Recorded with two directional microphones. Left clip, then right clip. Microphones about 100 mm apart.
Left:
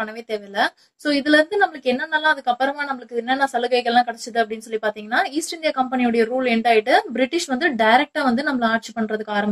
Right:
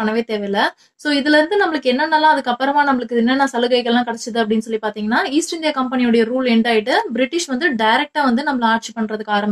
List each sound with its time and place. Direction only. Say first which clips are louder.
0.0 s a woman's voice: right 7 dB; 30° right (ahead or behind)